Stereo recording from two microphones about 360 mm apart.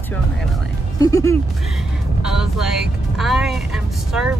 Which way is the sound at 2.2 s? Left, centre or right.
Centre.